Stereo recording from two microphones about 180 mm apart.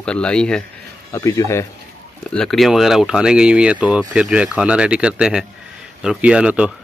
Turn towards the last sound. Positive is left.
turn(degrees=-5)  # may be behind; listen again after turning